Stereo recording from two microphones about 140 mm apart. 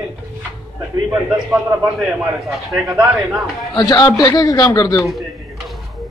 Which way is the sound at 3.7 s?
25° left (ahead or behind).